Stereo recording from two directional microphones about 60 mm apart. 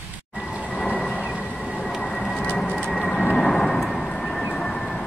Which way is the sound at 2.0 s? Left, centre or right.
Centre.